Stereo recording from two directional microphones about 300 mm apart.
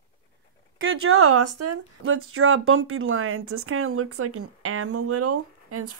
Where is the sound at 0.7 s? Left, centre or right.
Right.